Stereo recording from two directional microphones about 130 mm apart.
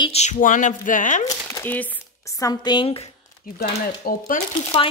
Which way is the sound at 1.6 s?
10° left (ahead or behind).